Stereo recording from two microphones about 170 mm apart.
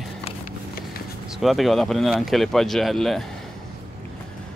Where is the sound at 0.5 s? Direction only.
60° left (ahead or behind).